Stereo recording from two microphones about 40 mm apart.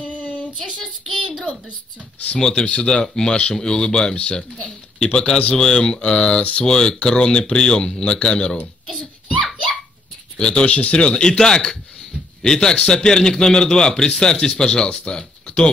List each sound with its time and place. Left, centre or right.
0.0 s a sound: left
2.3 s a man's voice: centre
10.4 s a man's voice: left